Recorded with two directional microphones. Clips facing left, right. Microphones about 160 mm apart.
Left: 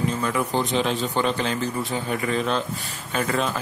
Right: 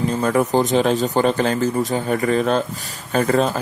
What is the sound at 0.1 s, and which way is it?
Speech, 40° right (ahead or behind).